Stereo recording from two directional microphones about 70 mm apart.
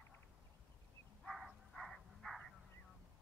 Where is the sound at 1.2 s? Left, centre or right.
Centre.